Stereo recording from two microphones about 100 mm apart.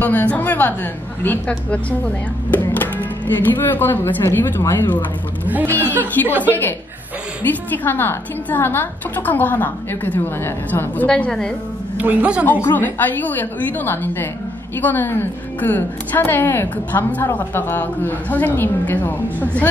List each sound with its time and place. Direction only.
0.0 s a woman's voice: 15° left (ahead or behind)
2.5 s a woman's voice: 20° left (ahead or behind)
7.4 s a woman's voice: 20° left (ahead or behind)
12.0 s a woman's voice: 10° right (ahead or behind)
12.6 s a woman's voice: 20° left (ahead or behind)